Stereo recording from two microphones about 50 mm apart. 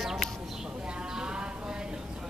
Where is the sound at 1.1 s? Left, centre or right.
Centre.